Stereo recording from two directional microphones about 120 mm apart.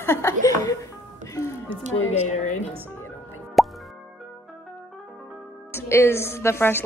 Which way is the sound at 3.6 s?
Centre (ahead or behind).